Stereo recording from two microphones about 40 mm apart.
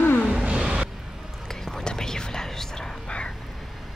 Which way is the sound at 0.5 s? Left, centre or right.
Right.